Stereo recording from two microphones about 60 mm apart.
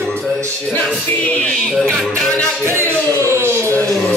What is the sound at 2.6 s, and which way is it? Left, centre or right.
Music, right.